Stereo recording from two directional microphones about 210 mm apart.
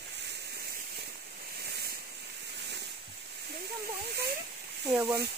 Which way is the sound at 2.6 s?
55° right (ahead or behind).